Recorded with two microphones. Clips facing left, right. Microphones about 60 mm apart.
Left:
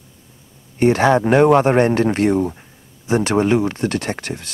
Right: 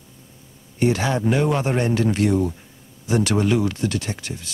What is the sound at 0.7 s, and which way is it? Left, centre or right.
Speech, left.